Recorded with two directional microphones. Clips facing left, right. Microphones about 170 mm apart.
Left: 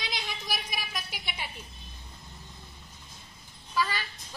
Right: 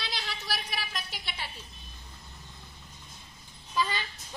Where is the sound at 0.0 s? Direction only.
15° left (ahead or behind).